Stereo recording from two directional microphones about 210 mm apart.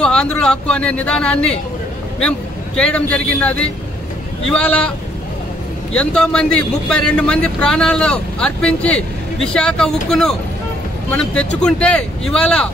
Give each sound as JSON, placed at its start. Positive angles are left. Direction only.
{"t": 0.0, "sound": "a man's voice", "side_deg": 5}
{"t": 5.9, "sound": "speech", "side_deg": 5}